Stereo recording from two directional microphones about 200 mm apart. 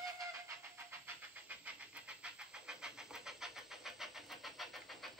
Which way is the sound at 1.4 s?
5° right (ahead or behind).